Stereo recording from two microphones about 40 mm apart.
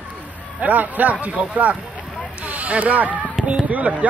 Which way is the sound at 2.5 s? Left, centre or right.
Right.